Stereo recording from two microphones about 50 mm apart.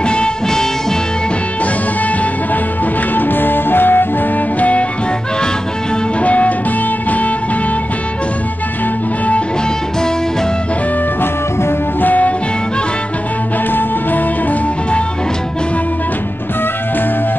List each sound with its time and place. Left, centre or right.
0.0 s music: centre
3.2 s music: left
4.6 s music: left
6.2 s music: left
12.0 s music: left
13.7 s music: left